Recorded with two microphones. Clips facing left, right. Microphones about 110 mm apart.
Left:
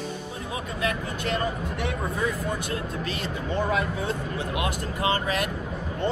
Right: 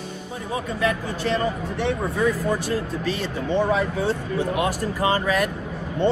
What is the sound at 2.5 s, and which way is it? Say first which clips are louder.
Speech: right 6 dB; 35° right (ahead or behind).